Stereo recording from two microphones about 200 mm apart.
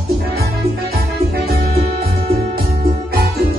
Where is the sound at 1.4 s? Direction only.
50° right (ahead or behind).